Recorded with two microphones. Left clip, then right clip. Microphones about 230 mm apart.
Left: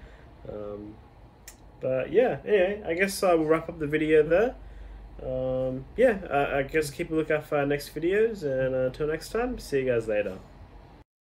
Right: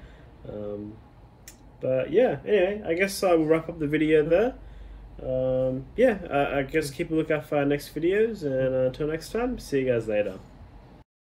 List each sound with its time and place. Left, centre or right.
1.8 s speech: left